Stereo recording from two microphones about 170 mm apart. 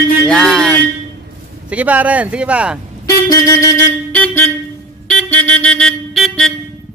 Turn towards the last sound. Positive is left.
turn(degrees=0)  # may be behind; listen again after turning